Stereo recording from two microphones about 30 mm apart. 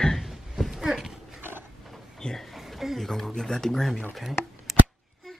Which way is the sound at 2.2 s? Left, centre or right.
Centre.